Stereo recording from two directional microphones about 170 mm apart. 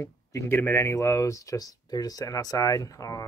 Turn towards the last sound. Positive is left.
turn(degrees=20)  # may be behind; listen again after turning